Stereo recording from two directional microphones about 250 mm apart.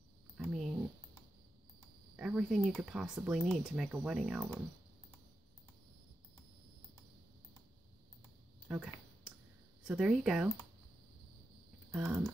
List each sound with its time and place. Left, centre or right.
0.4 s a sound: centre
2.1 s speech: centre
8.6 s speech: centre
11.9 s speech: centre